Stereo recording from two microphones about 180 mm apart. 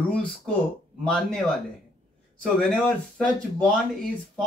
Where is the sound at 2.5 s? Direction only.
5° left (ahead or behind).